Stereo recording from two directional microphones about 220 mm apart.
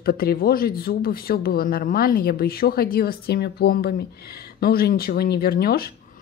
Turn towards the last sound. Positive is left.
turn(degrees=45)  # may be behind; listen again after turning